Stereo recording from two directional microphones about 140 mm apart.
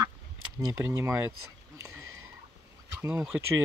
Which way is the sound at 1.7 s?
20° right (ahead or behind).